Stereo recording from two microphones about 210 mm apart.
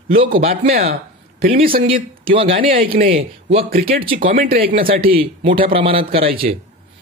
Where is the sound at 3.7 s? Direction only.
45° right (ahead or behind).